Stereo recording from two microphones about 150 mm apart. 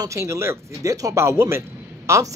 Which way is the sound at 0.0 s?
20° right (ahead or behind).